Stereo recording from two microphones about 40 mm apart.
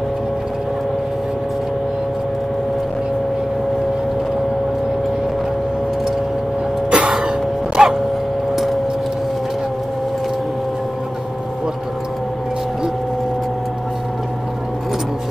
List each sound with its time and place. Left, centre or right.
6.9 s throat clearing: right